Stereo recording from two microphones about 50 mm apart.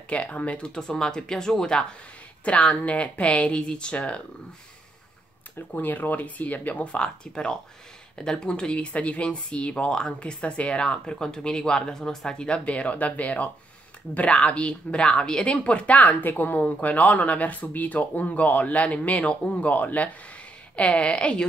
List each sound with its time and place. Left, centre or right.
0.1 s speech: left
0.7 s speech: centre
2.4 s speech: left
5.7 s speech: left
7.0 s speech: centre
20.7 s speech: left